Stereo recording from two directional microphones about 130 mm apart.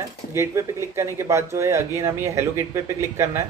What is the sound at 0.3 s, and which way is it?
Speech, 20° right (ahead or behind).